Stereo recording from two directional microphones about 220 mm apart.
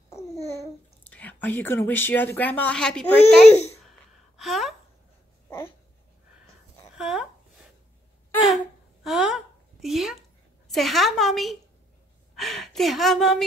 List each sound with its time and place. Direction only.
1.1 s a woman's voice: 10° left (ahead or behind)
3.5 s a child's voice: 30° left (ahead or behind)
4.4 s speech: centre (ahead or behind)
7.0 s a sound: centre (ahead or behind)
9.0 s a sound: centre (ahead or behind)
10.7 s a woman's voice: centre (ahead or behind)